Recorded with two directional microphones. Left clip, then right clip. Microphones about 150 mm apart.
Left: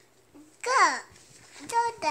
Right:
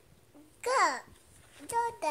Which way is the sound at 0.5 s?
20° right (ahead or behind).